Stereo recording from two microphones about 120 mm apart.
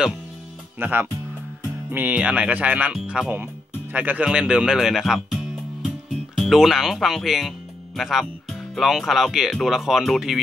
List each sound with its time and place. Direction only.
0.7 s speech: 15° right (ahead or behind); by 10.4 s centre (ahead or behind)